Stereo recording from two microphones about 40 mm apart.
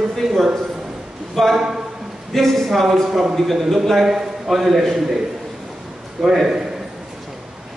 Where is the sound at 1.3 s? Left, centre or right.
Centre.